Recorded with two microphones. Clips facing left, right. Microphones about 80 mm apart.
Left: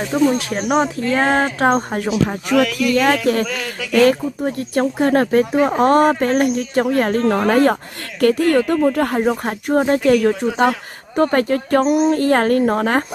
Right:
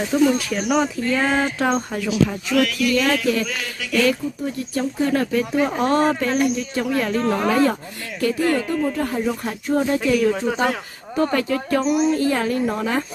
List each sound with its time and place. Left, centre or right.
0.1 s speech: left
12.1 s speech: left